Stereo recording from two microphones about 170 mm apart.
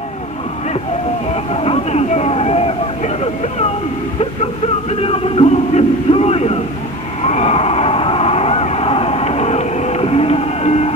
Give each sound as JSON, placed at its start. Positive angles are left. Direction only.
{"t": 1.3, "sound": "a sound", "side_deg": 35}
{"t": 5.0, "sound": "music", "side_deg": 35}
{"t": 7.2, "sound": "vehicle", "side_deg": 40}